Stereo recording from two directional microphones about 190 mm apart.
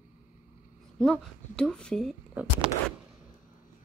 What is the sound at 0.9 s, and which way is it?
Speech, 5° left (ahead or behind).